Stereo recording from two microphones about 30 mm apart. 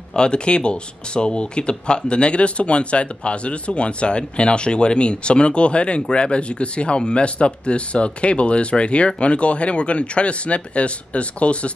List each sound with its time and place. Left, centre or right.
0.1 s speech: left